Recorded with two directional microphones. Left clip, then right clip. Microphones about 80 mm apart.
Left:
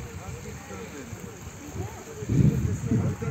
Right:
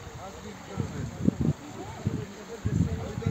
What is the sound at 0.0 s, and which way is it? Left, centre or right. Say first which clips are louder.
Vehicle: left 1 dB; left.